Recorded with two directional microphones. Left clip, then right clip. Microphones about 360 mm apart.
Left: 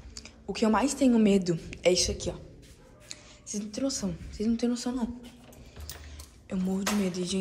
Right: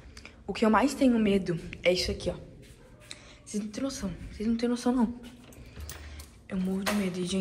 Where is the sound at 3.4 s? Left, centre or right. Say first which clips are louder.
Left 2 dB; centre.